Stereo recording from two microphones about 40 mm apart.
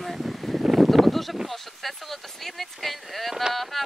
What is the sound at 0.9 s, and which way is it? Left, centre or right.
Speech, centre.